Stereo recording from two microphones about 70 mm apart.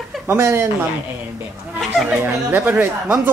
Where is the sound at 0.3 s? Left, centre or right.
Right.